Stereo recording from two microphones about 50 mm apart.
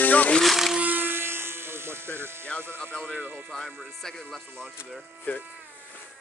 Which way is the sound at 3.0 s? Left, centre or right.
Right.